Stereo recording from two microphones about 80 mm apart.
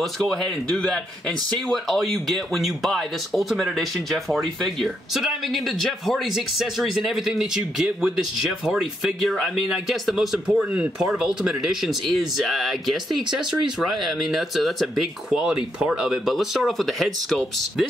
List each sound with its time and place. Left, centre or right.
0.0 s speech: centre
10.6 s speech: centre
11.0 s speech: centre